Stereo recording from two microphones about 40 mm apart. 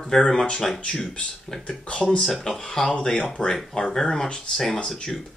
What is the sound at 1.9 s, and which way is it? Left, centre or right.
Speech, left.